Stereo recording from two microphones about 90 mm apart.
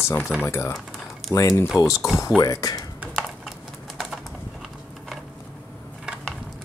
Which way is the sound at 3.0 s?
10° right (ahead or behind).